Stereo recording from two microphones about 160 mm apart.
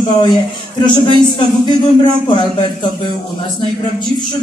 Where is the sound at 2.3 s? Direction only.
30° left (ahead or behind).